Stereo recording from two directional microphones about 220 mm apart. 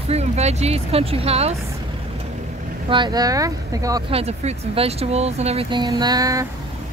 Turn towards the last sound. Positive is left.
turn(degrees=-15)  # may be behind; listen again after turning